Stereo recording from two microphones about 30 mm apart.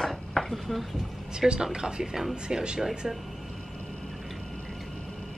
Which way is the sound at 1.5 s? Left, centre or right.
Right.